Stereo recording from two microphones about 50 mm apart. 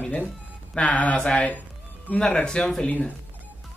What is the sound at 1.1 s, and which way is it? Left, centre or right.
Speech, centre.